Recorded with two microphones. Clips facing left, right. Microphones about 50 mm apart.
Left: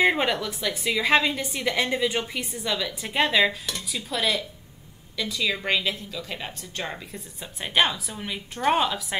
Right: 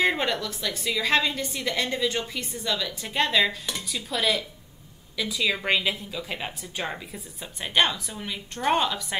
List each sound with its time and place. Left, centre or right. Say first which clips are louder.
0.0 s a woman's voice: left 2 dB; centre
3.9 s a woman's voice: even; centre
7.6 s a woman's voice: even; centre